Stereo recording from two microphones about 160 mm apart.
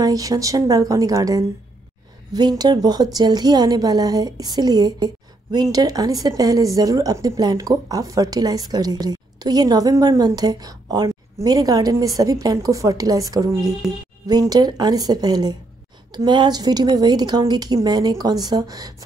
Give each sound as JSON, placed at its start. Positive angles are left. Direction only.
{"t": 0.0, "sound": "a woman's voice", "side_deg": -20}